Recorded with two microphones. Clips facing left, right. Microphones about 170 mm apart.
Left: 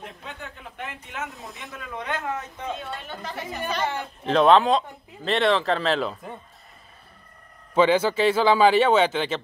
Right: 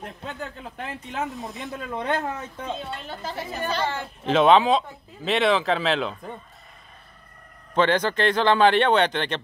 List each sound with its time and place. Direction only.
0.0 s speech: 35° right (ahead or behind)
1.4 s speech: centre (ahead or behind)
2.0 s speech: 35° right (ahead or behind)
4.3 s speech: centre (ahead or behind)
7.7 s speech: 10° left (ahead or behind)